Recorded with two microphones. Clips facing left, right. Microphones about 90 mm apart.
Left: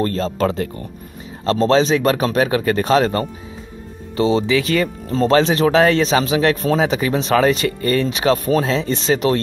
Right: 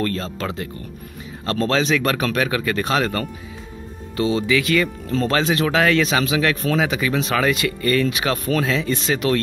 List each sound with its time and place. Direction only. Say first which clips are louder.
0.0 s speech: left 6 dB; 35° left (ahead or behind)